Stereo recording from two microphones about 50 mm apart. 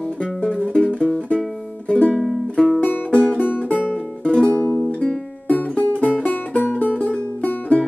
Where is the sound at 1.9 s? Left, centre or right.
Left.